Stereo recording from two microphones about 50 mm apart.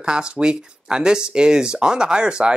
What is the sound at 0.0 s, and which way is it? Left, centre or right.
Speech, centre.